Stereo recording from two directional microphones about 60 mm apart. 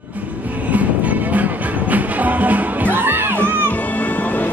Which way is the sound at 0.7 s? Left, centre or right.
Right.